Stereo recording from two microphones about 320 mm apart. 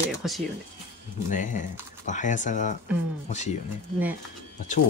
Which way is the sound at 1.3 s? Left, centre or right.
Left.